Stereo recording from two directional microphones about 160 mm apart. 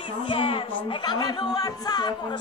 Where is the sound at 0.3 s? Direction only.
30° left (ahead or behind).